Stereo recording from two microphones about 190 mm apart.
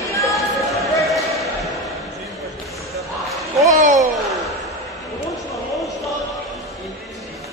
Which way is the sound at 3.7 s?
40° right (ahead or behind).